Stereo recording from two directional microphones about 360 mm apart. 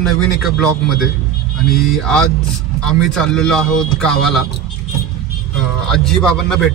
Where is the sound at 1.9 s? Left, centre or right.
Centre.